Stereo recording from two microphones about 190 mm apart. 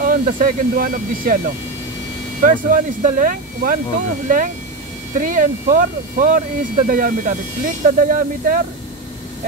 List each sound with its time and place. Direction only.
0.0 s speech: 50° right (ahead or behind)
5.1 s speech: 45° right (ahead or behind)